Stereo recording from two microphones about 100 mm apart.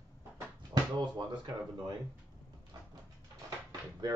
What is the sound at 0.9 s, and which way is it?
Speech, 50° right (ahead or behind).